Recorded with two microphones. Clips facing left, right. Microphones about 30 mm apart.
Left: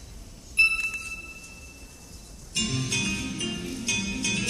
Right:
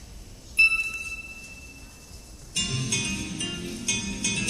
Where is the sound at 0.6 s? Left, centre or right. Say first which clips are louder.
Right 1 dB; centre.